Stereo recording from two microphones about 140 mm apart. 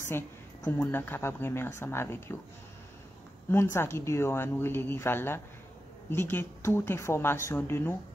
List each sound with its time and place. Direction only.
0.7 s speech: 15° left (ahead or behind)
3.4 s speech: 15° left (ahead or behind)